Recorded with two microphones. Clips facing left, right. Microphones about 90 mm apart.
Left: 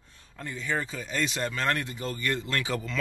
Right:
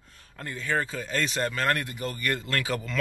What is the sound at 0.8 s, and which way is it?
Speech, 40° right (ahead or behind).